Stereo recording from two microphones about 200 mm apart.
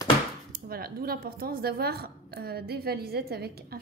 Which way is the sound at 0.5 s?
50° right (ahead or behind).